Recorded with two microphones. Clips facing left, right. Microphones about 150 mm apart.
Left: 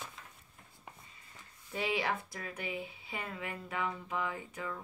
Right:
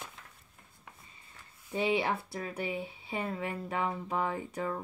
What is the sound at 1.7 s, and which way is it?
Speech, 25° right (ahead or behind).